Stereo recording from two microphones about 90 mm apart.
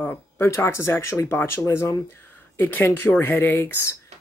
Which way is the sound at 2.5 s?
20° left (ahead or behind).